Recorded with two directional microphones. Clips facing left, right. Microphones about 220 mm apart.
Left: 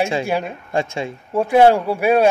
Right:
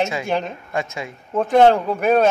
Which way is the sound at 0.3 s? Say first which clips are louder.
Left 1 dB; 10° left (ahead or behind).